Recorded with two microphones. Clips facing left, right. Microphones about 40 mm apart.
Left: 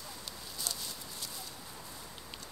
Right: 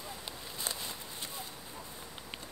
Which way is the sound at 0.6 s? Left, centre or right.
Right.